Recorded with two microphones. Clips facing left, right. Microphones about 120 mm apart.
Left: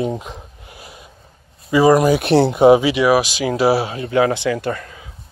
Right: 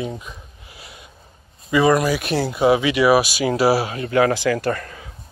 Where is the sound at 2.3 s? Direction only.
25° left (ahead or behind).